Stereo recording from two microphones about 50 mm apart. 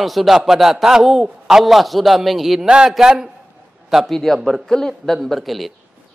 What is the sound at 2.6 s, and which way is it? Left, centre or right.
A man's voice, centre.